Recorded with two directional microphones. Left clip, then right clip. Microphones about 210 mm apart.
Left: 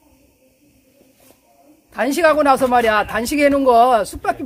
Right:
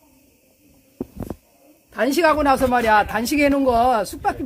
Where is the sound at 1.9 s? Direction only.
5° left (ahead or behind).